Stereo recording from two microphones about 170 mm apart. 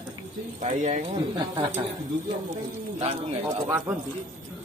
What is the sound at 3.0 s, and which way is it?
Speech, 35° right (ahead or behind).